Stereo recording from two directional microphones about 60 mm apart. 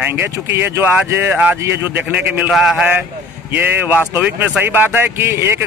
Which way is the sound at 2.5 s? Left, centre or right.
Centre.